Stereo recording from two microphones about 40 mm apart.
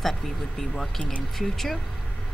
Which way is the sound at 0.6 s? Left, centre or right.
Centre.